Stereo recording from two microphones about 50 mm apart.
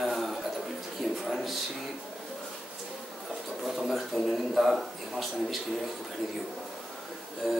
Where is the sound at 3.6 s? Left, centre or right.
Centre.